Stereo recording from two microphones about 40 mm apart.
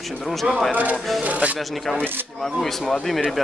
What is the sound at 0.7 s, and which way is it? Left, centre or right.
Speech, right.